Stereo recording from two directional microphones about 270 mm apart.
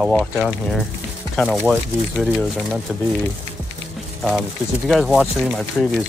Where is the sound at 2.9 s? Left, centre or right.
Centre.